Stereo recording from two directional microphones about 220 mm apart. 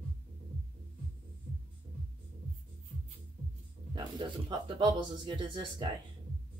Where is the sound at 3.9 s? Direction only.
20° right (ahead or behind).